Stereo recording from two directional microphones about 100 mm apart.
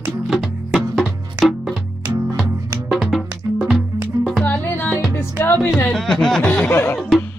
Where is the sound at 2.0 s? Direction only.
30° right (ahead or behind).